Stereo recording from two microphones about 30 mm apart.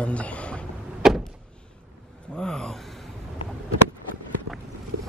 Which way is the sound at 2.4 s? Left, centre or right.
Left.